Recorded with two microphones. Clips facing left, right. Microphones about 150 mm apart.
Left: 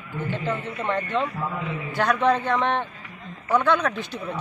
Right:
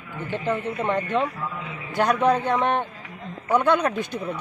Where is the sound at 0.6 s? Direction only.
15° right (ahead or behind).